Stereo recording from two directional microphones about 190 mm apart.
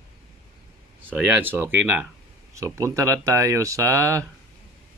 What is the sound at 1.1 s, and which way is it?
Speech, 10° right (ahead or behind).